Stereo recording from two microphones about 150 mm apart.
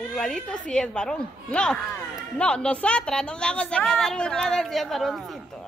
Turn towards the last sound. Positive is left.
turn(degrees=0)  # may be behind; listen again after turning